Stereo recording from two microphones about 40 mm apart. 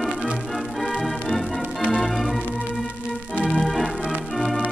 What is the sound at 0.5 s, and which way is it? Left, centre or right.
Organ, centre.